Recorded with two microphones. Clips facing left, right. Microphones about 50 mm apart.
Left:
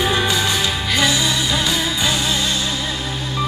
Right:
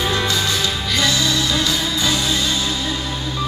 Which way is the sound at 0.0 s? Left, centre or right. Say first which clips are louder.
Left 2 dB; centre.